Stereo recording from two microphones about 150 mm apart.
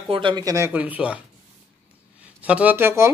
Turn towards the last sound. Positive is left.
turn(degrees=-15)  # may be behind; listen again after turning